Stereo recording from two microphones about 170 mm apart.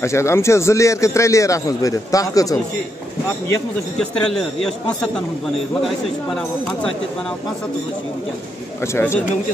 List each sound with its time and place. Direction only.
0.0 s a man's voice: 15° left (ahead or behind)
4.0 s a man's voice: 5° left (ahead or behind)
8.8 s a man's voice: 15° left (ahead or behind)